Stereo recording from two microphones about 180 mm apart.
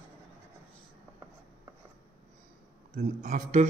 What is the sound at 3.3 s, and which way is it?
Speech, 45° right (ahead or behind).